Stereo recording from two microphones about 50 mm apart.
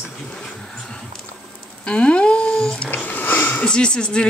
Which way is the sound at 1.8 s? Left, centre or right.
Left.